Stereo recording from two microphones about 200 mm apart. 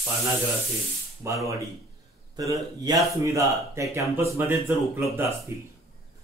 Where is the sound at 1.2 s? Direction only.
15° right (ahead or behind).